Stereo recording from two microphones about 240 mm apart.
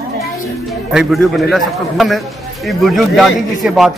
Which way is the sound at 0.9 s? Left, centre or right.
Centre.